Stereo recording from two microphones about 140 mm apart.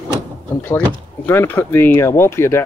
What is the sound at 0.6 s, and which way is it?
Speech, 15° left (ahead or behind).